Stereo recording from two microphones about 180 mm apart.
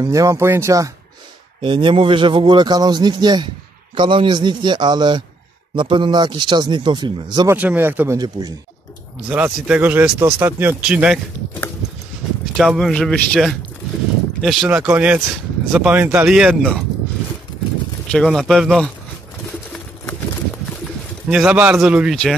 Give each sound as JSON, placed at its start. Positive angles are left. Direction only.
{"t": 0.0, "sound": "a man's voice", "side_deg": -20}
{"t": 7.5, "sound": "speech", "side_deg": -10}
{"t": 8.2, "sound": "a man's voice", "side_deg": -20}
{"t": 9.3, "sound": "speech", "side_deg": -10}
{"t": 12.5, "sound": "speech", "side_deg": 0}
{"t": 18.1, "sound": "speech", "side_deg": 0}
{"t": 21.3, "sound": "speech", "side_deg": -5}